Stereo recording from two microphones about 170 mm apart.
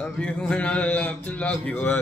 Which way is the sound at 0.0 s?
10° left (ahead or behind).